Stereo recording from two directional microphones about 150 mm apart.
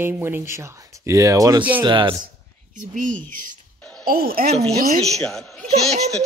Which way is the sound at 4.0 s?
85° right.